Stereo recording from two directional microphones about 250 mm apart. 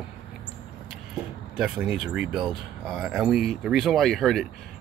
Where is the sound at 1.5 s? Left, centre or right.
Centre.